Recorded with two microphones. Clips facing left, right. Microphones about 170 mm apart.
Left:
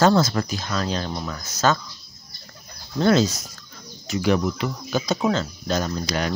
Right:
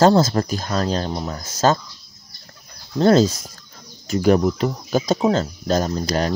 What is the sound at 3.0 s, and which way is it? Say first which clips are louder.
Speech: right 4 dB; 35° right (ahead or behind).